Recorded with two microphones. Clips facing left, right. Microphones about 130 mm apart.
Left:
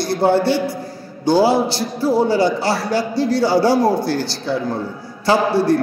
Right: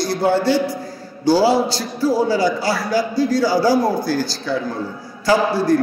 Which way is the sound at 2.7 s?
30° left (ahead or behind).